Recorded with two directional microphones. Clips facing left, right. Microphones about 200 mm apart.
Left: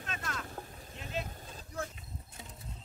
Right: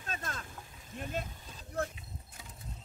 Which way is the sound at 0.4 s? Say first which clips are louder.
Left 5 dB; 45° left (ahead or behind).